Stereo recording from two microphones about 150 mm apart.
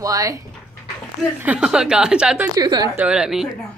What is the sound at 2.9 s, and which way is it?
Speech, 5° right (ahead or behind).